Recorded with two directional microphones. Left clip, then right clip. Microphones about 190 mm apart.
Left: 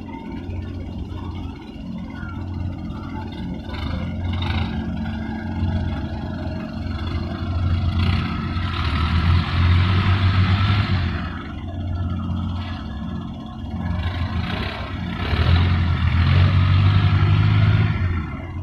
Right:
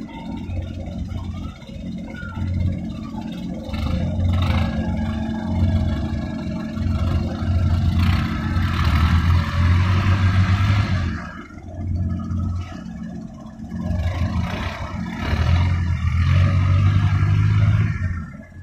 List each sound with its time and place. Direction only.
3.8 s vehicle: 30° right (ahead or behind)
7.9 s vehicle: 25° right (ahead or behind)
14.3 s vehicle: 15° right (ahead or behind)